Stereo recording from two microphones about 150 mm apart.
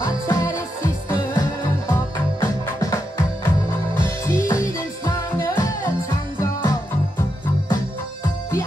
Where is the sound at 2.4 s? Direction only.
20° left (ahead or behind).